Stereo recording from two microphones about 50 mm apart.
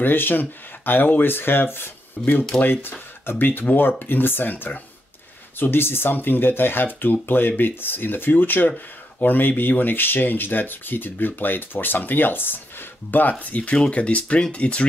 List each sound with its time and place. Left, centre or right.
0.0 s speech: left
5.6 s speech: left